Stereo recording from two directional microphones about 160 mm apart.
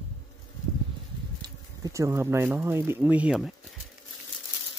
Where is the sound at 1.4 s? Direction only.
20° right (ahead or behind); by 3.6 s 5° right (ahead or behind).